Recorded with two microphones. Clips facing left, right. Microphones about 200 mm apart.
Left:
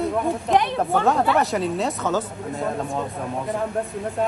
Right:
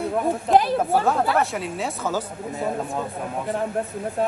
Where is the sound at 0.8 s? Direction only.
5° right (ahead or behind).